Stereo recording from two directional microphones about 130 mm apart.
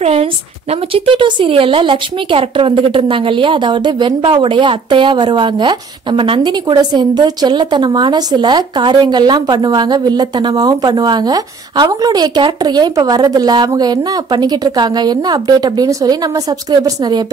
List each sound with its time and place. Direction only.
0.0 s a woman's voice: 50° right (ahead or behind)
0.9 s speech: 40° right (ahead or behind)